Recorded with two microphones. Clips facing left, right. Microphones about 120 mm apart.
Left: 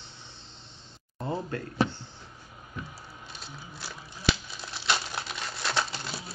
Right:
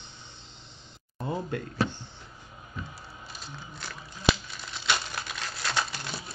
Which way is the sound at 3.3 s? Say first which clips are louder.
Right 1 dB; 5° left (ahead or behind).